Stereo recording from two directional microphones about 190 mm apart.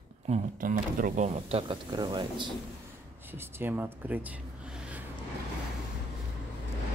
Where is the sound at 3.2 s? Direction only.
10° right (ahead or behind).